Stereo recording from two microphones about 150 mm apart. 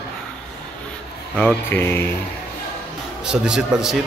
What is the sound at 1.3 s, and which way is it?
Speech, 5° left (ahead or behind).